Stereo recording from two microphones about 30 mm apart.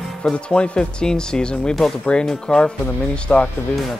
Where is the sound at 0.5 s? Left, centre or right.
Left.